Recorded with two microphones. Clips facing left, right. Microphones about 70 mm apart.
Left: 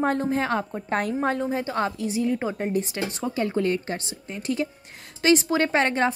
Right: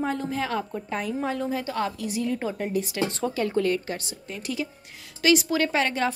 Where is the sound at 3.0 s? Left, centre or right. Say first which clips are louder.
Even; centre.